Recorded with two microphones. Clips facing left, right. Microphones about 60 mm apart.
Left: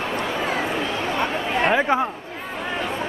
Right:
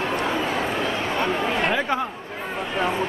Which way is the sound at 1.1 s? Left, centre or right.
Centre.